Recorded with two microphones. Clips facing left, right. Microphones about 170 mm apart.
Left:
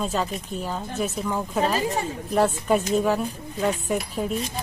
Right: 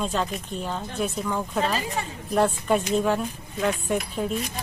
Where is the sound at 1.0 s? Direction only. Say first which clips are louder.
Even; 5° left (ahead or behind).